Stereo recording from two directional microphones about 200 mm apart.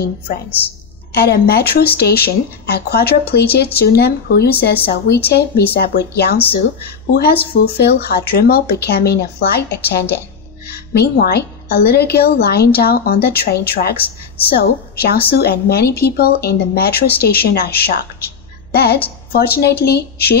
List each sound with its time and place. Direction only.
1.1 s a woman's voice: 50° left (ahead or behind)
7.5 s a woman's voice: 50° left (ahead or behind)